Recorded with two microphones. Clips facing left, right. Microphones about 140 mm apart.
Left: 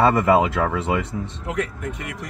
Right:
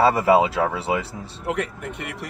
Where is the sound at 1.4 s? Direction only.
65° right (ahead or behind).